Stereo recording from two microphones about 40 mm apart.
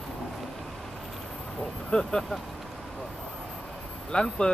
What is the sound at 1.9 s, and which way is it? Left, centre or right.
Speech, centre.